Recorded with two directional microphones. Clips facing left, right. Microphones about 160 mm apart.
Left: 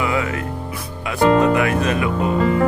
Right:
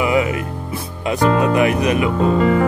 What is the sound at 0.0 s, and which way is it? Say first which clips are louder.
Speech: right 4 dB; 20° right (ahead or behind).